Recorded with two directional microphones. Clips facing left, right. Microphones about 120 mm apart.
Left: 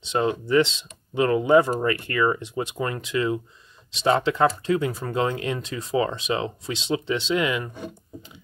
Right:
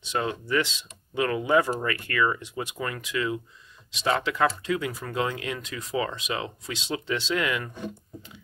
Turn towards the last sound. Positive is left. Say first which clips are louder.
# left 4 dB
turn(degrees=20)  # may be behind; listen again after turning